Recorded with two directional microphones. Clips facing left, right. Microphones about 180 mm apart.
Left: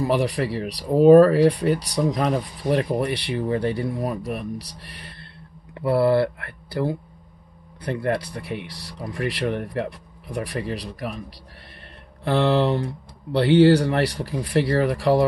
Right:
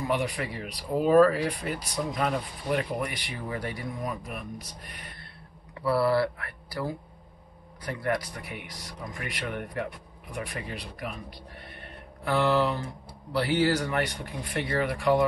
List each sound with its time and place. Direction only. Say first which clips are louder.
0.0 s speech: left 7 dB; 35° left (ahead or behind)
12.3 s speech: left 5 dB; 30° left (ahead or behind)